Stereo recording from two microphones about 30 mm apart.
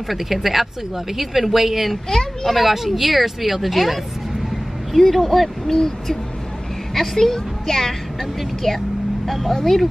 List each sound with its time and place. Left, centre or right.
0.1 s a woman's voice: centre
2.0 s speech: centre
2.5 s speech: centre
5.7 s a woman's voice: centre